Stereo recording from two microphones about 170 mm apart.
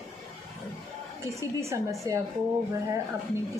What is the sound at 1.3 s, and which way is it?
Speech, 15° right (ahead or behind).